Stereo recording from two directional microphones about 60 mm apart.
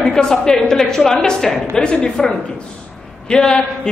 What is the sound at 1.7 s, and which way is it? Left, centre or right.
Speech, centre.